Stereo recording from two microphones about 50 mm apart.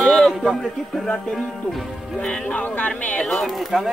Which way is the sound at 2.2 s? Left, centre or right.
Left.